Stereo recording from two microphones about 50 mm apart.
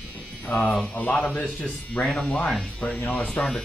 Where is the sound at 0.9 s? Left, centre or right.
Left.